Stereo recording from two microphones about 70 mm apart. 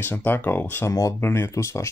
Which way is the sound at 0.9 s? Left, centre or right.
Left.